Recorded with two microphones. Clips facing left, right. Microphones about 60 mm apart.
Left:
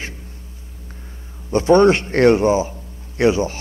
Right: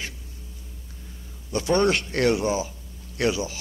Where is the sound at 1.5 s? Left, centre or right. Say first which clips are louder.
Left 9 dB; left.